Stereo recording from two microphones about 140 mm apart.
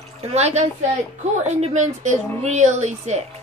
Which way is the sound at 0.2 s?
50° right (ahead or behind).